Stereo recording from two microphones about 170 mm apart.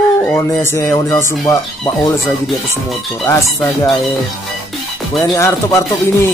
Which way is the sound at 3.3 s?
15° left (ahead or behind).